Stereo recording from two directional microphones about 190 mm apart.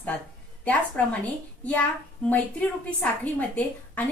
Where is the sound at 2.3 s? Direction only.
10° left (ahead or behind).